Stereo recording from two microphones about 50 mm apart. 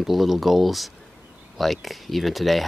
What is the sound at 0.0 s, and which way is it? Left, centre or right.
Speech, centre.